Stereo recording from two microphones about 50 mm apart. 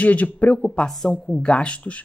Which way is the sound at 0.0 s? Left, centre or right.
Left.